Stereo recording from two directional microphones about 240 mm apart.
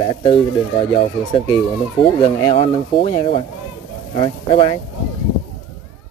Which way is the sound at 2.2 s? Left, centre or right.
Left.